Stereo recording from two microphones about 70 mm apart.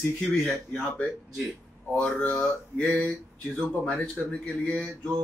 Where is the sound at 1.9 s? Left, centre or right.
Centre.